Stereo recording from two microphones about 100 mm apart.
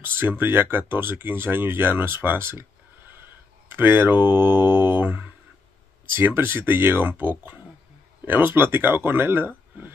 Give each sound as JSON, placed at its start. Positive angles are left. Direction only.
{"t": 0.0, "sound": "speech", "side_deg": -20}